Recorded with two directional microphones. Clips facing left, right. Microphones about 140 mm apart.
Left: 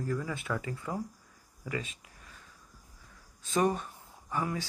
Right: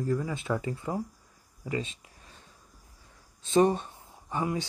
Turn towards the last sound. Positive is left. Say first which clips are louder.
# right 3 dB
turn(degrees=-20)  # may be behind; listen again after turning